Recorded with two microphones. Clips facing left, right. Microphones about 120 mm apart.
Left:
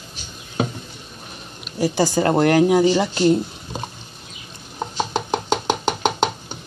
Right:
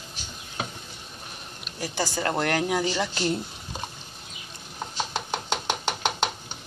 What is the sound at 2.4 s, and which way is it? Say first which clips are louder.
Speech: left 12 dB; 10° left (ahead or behind).